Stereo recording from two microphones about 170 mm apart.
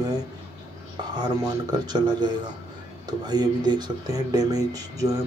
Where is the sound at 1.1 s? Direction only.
25° right (ahead or behind).